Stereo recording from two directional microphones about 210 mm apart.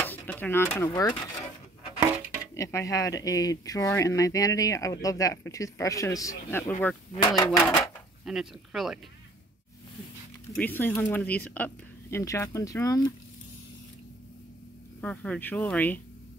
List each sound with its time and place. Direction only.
0.0 s speech: 10° left (ahead or behind)
2.5 s speech: 15° left (ahead or behind)
7.8 s speech: centre (ahead or behind)
10.5 s speech: 10° left (ahead or behind)
15.0 s speech: 5° left (ahead or behind)